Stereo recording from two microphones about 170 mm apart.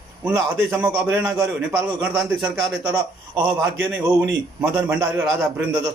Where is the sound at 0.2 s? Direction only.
5° right (ahead or behind).